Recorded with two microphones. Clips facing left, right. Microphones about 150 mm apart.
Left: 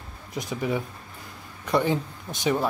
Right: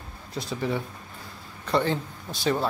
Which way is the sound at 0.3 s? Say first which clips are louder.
Left 1 dB; 15° left (ahead or behind).